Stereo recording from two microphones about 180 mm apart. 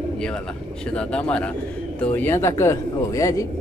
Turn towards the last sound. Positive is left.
turn(degrees=15)  # may be behind; listen again after turning